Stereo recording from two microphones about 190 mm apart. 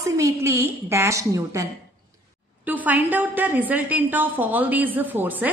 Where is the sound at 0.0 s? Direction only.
15° right (ahead or behind).